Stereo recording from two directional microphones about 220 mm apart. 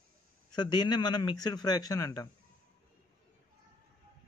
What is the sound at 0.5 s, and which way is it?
A man's voice, 20° left (ahead or behind).